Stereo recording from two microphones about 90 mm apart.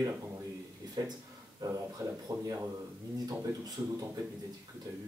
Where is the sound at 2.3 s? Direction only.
25° right (ahead or behind).